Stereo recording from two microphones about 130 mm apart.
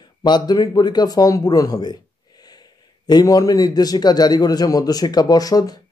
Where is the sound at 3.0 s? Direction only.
30° left (ahead or behind).